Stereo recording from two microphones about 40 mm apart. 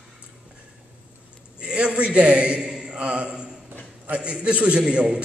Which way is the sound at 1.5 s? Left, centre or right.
Right.